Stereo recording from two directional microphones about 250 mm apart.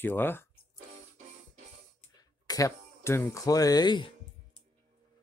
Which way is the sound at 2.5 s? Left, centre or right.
Centre.